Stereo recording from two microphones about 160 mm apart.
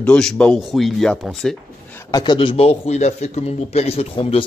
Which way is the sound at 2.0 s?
25° left (ahead or behind).